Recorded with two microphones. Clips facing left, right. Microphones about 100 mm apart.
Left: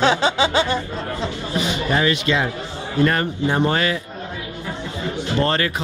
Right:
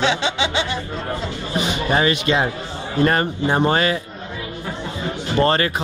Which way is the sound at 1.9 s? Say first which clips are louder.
Right 2 dB; 25° right (ahead or behind).